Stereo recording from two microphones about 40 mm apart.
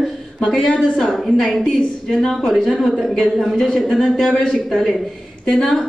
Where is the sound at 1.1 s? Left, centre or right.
Centre.